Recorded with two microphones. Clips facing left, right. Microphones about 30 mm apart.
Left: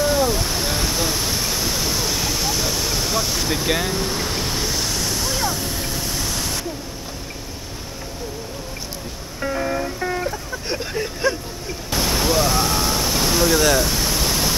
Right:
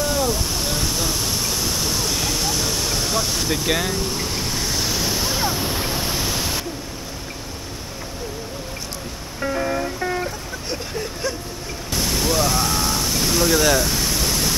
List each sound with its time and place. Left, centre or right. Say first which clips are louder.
0.0 s vehicle: left 3 dB; centre
4.0 s waves: left 1 dB; centre
9.4 s music: even; centre
10.7 s vehicle: left 3 dB; centre
11.9 s a sound: left 2 dB; centre